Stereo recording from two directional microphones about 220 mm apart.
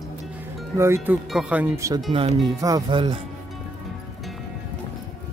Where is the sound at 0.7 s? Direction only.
10° right (ahead or behind).